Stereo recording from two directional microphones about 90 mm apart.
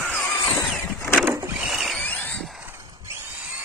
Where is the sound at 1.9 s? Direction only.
15° left (ahead or behind).